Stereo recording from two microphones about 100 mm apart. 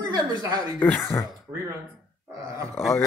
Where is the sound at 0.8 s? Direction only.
20° left (ahead or behind).